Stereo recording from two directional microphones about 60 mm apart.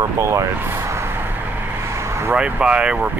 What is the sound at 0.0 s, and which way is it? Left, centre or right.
Speech, right.